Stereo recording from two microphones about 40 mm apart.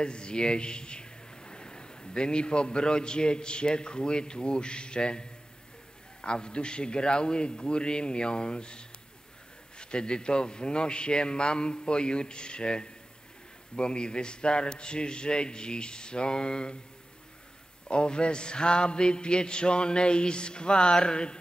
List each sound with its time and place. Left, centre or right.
0.0 s a man's voice: left
6.2 s mantra: left
17.8 s mantra: left